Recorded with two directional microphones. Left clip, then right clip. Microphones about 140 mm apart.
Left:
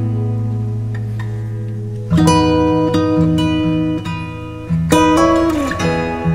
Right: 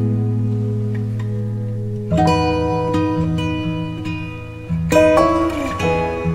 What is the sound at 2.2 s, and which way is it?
Music, 20° right (ahead or behind).